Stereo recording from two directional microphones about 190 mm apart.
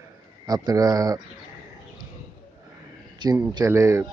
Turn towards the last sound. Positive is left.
turn(degrees=-15)  # may be behind; listen again after turning